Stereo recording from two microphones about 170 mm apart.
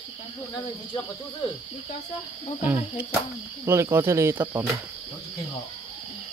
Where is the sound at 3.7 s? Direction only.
15° right (ahead or behind).